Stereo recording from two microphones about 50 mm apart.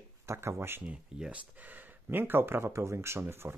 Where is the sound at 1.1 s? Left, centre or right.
Centre.